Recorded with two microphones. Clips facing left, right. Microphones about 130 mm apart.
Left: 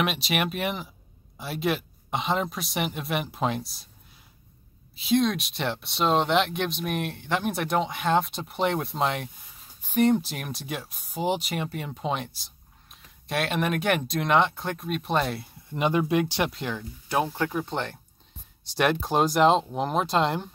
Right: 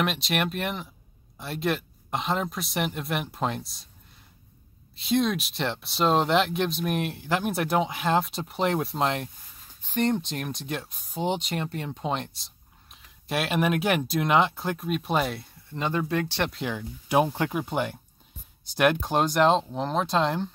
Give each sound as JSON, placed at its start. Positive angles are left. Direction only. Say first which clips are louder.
{"t": 0.0, "sound": "speech", "louder": "even", "side_deg": 5}
{"t": 4.9, "sound": "speech", "louder": "left 1 dB", "side_deg": 0}
{"t": 15.7, "sound": "speech", "louder": "left 4 dB", "side_deg": 15}
{"t": 16.4, "sound": "speech", "louder": "even", "side_deg": 0}
{"t": 16.7, "sound": "speech", "louder": "right 3 dB", "side_deg": -15}